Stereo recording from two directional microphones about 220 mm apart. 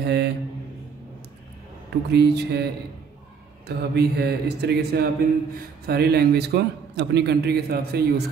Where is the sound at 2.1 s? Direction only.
50° right (ahead or behind).